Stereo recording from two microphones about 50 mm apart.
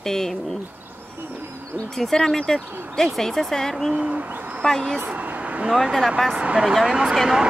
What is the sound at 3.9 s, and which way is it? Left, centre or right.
Speech, right.